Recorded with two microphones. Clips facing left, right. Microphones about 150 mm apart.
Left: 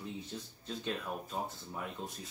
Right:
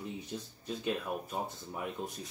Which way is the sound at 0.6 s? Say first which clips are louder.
Right 4 dB; 10° right (ahead or behind).